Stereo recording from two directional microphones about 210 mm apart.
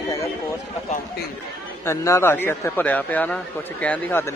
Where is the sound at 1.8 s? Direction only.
15° left (ahead or behind).